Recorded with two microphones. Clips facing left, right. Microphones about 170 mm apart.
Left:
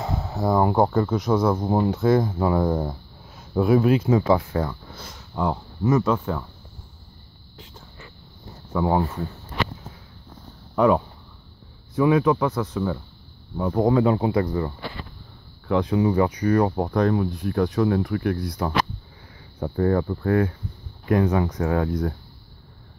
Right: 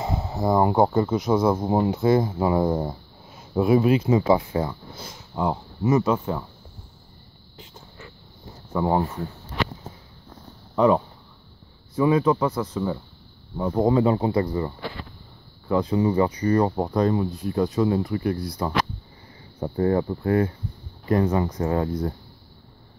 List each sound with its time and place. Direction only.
0.0 s a sound: 5° right (ahead or behind)
0.8 s speech: 10° right (ahead or behind)
8.7 s speech: centre (ahead or behind)
10.8 s speech: 5° left (ahead or behind)
15.8 s speech: centre (ahead or behind)
19.7 s speech: 20° right (ahead or behind)
20.2 s speech: 5° right (ahead or behind)